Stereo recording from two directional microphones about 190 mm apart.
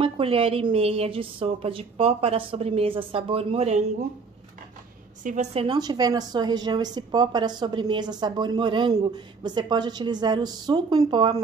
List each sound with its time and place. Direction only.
0.0 s a woman's voice: 30° right (ahead or behind)
5.2 s a woman's voice: 40° right (ahead or behind)